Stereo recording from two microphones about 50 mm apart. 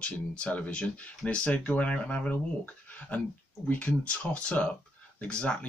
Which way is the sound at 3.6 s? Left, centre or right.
Left.